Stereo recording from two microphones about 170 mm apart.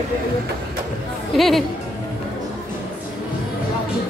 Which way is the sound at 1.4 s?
Centre (ahead or behind).